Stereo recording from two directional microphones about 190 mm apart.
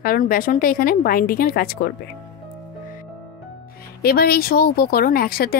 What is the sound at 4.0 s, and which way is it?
A woman's voice, 55° left (ahead or behind).